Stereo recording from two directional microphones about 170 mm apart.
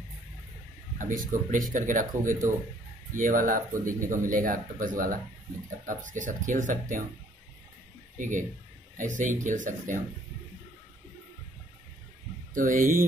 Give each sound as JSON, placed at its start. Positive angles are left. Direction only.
{"t": 0.9, "sound": "speech", "side_deg": -50}
{"t": 8.2, "sound": "speech", "side_deg": -50}
{"t": 12.5, "sound": "speech", "side_deg": -55}